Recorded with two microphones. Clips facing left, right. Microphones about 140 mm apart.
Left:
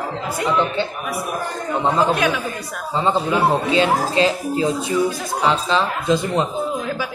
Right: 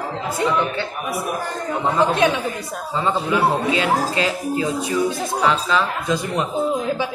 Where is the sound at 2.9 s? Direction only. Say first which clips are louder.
Left 2 dB; 25° left (ahead or behind).